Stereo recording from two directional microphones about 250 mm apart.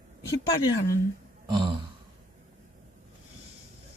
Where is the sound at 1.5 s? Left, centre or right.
Centre.